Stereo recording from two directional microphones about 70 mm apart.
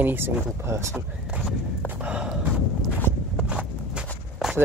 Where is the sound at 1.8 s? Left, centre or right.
Centre.